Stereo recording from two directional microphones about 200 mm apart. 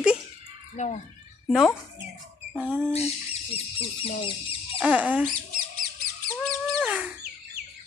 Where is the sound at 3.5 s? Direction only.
30° left (ahead or behind).